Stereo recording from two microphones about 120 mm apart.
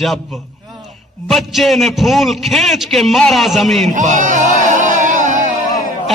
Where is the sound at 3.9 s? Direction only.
90° right.